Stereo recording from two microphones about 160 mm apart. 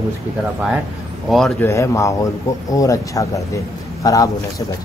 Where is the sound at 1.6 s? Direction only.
20° left (ahead or behind).